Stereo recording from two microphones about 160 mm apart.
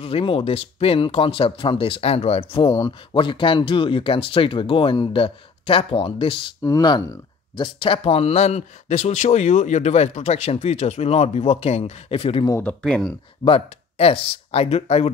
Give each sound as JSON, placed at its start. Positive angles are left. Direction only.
{"t": 0.0, "sound": "speech", "side_deg": 35}
{"t": 6.6, "sound": "speech", "side_deg": 25}
{"t": 12.4, "sound": "speech", "side_deg": 15}
{"t": 12.8, "sound": "speech", "side_deg": 5}
{"t": 13.4, "sound": "speech", "side_deg": 35}